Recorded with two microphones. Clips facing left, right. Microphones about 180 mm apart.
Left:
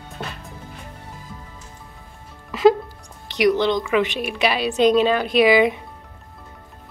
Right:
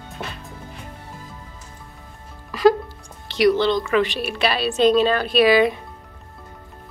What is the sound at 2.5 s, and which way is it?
Music, 25° left (ahead or behind).